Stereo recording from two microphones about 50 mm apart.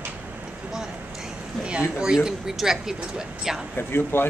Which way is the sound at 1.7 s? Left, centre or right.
Centre.